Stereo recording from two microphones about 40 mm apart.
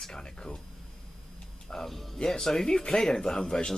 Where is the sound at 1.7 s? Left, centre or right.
Centre.